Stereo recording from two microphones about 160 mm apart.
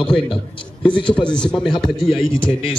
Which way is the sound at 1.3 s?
5° left (ahead or behind).